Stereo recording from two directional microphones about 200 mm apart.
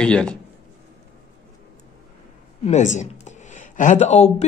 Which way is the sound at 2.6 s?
35° left (ahead or behind).